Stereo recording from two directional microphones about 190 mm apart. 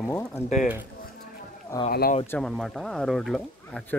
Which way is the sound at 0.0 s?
15° left (ahead or behind).